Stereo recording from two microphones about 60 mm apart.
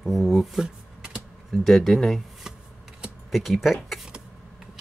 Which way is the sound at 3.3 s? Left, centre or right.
Centre.